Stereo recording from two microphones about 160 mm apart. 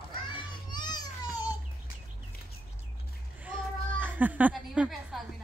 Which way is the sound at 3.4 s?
10° right (ahead or behind).